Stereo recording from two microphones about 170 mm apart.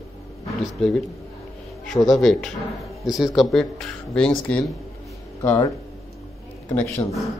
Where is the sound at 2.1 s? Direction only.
Centre (ahead or behind).